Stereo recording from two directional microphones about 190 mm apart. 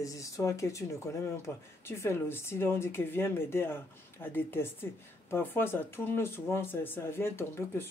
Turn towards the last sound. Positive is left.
turn(degrees=10)  # may be behind; listen again after turning